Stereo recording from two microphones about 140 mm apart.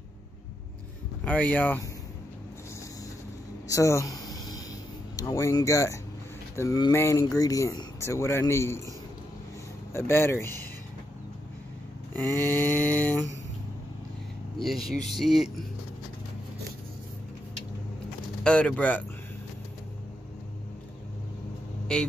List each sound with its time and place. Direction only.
1.2 s mantra: 10° left (ahead or behind)
3.6 s a sound: 20° left (ahead or behind)
5.1 s a man's voice: 25° left (ahead or behind)
6.5 s a sound: 20° left (ahead or behind)
6.9 s a man's voice: 20° left (ahead or behind)
9.9 s a man's voice: 20° left (ahead or behind)
12.2 s mantra: 15° left (ahead or behind)
14.6 s speech: centre (ahead or behind)
18.4 s mantra: 5° left (ahead or behind)
21.9 s speech: 5° left (ahead or behind)